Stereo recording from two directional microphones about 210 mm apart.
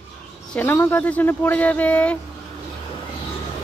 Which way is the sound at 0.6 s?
10° left (ahead or behind).